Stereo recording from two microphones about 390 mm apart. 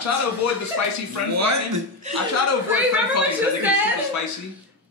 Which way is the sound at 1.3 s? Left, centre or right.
Right.